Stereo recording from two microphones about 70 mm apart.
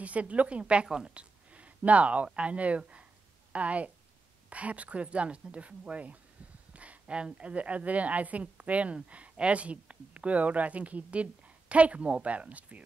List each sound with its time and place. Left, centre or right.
0.0 s a woman's voice: centre